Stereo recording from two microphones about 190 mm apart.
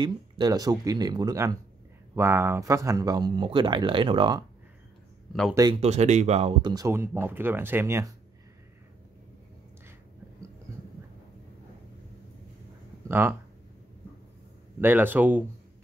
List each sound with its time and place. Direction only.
0.0 s speech: 20° right (ahead or behind)
5.5 s speech: 20° right (ahead or behind)
5.8 s speech: 35° right (ahead or behind); by 8.1 s 15° right (ahead or behind)
13.1 s speech: 10° right (ahead or behind)
14.8 s speech: 10° right (ahead or behind)